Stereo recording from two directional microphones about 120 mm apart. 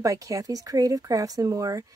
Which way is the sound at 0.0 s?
30° right (ahead or behind).